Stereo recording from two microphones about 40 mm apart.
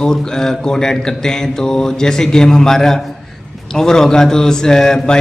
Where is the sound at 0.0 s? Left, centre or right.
Centre.